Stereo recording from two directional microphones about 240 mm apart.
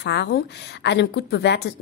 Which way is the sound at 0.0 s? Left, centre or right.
Left.